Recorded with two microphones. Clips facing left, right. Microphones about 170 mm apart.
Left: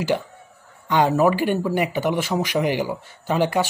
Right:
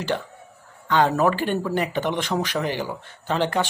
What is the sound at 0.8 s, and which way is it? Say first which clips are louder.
Speech: left 2 dB; 15° left (ahead or behind).